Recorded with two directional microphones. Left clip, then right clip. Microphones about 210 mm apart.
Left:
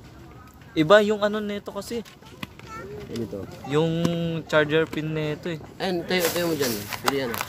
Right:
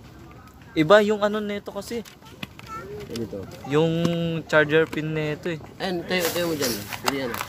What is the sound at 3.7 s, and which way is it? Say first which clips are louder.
Speech: right 2 dB; 10° right (ahead or behind).